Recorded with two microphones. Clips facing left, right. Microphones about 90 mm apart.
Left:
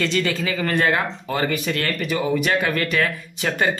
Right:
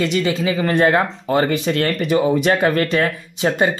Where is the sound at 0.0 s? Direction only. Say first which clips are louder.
Right 4 dB; 15° right (ahead or behind); by 3.5 s 35° right (ahead or behind).